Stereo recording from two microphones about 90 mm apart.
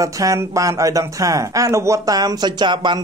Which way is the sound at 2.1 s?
50° right (ahead or behind).